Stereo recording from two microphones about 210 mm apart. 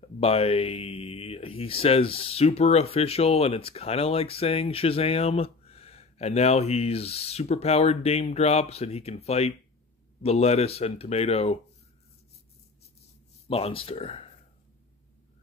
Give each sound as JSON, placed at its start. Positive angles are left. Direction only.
{"t": 0.0, "sound": "speech", "side_deg": 30}
{"t": 13.5, "sound": "speech", "side_deg": 25}